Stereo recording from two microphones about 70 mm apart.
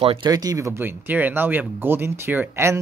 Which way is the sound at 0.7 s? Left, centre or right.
Right.